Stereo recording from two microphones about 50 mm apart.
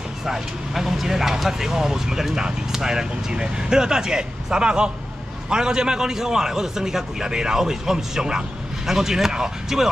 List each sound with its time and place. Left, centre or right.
0.2 s speech: centre